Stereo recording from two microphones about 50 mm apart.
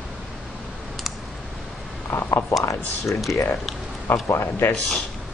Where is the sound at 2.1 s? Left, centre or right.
Left.